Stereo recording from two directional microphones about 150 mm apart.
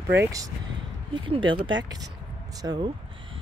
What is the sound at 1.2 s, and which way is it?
Speech, 35° right (ahead or behind).